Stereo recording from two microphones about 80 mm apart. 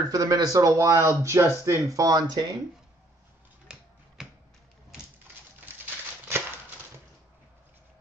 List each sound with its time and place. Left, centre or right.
0.1 s speech: right
3.7 s finger snapping: centre